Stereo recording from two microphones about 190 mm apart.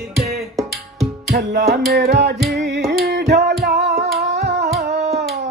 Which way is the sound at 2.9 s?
55° right (ahead or behind).